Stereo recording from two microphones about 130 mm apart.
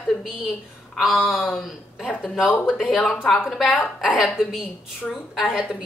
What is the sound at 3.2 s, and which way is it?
Speech, 10° left (ahead or behind).